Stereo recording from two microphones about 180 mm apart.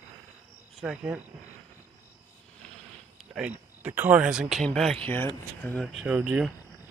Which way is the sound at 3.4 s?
10° right (ahead or behind).